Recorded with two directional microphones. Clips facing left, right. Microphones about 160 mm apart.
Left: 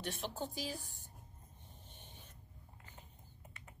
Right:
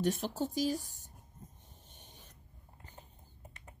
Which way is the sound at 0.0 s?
40° right (ahead or behind).